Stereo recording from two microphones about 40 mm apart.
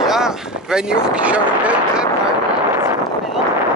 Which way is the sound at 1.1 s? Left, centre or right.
Right.